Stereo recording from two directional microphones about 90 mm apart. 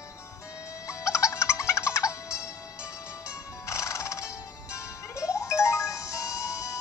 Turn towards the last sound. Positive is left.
turn(degrees=35)  # may be behind; listen again after turning